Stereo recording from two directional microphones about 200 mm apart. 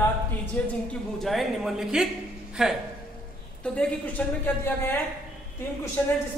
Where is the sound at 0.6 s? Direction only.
5° left (ahead or behind).